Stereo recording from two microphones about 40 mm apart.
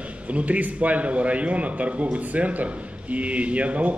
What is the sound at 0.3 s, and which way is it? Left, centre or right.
A man's voice, right.